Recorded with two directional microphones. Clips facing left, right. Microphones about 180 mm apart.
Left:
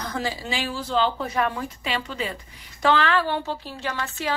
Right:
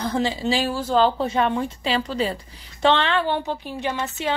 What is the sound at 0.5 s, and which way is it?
Speech, 40° right (ahead or behind).